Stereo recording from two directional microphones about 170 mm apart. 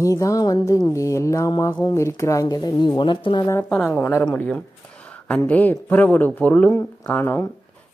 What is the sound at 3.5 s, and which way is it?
A woman's voice, 10° left (ahead or behind).